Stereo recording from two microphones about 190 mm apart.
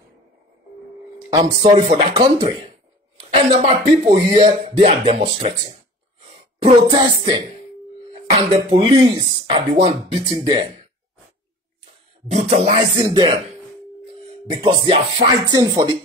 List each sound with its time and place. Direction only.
1.3 s speech: 20° right (ahead or behind)
3.3 s a sound: 30° right (ahead or behind)
4.1 s speech: 30° right (ahead or behind)
8.6 s speech: 30° right (ahead or behind)
12.3 s speech: 35° right (ahead or behind)
13.0 s speech: 25° right (ahead or behind)